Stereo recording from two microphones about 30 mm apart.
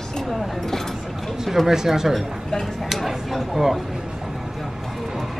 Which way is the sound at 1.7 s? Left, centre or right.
Centre.